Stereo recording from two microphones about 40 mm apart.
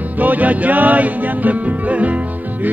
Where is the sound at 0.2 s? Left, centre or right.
Right.